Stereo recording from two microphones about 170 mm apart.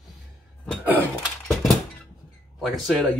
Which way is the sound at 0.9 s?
Centre (ahead or behind).